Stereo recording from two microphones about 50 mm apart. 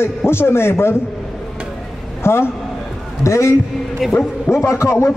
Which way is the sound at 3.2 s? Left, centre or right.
Left.